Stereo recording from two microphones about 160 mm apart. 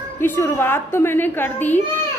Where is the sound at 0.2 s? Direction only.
15° left (ahead or behind).